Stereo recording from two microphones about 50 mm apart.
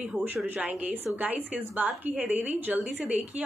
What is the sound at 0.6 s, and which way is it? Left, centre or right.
A woman's voice, right.